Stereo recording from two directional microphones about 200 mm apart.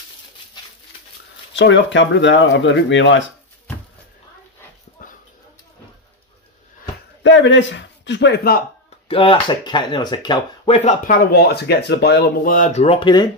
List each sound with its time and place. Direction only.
1.5 s speech: 65° left (ahead or behind)
5.0 s a sound: 45° left (ahead or behind)
7.2 s a man's voice: 65° left (ahead or behind)
9.0 s speech: 25° left (ahead or behind)
11.1 s speech: 50° left (ahead or behind); by 13.3 s 25° left (ahead or behind)